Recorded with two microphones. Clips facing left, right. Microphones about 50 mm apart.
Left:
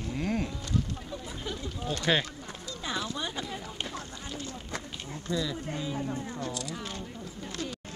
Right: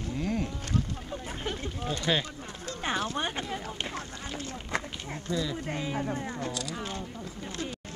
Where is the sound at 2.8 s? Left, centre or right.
Right.